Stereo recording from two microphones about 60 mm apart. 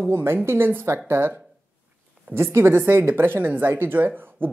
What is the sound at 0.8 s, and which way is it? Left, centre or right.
Speech, right.